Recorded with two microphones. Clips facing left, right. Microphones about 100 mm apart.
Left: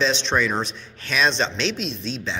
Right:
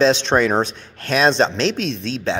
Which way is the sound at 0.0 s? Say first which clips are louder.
Right 6 dB; 50° right (ahead or behind).